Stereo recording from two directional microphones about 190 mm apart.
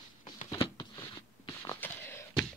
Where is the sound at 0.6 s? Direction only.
25° left (ahead or behind).